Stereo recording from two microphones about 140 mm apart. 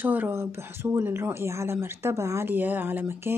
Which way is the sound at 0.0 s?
15° right (ahead or behind).